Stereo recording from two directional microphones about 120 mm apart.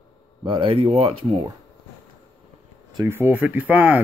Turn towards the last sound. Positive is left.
turn(degrees=-15)  # may be behind; listen again after turning